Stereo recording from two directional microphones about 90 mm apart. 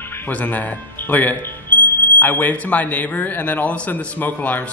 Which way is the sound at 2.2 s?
20° left (ahead or behind).